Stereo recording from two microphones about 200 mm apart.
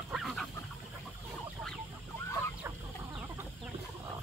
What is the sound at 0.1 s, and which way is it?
Goose, centre (ahead or behind).